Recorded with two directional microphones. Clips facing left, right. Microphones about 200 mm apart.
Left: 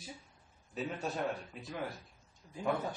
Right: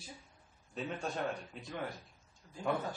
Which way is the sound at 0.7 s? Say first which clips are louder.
Left 1 dB; 5° left (ahead or behind).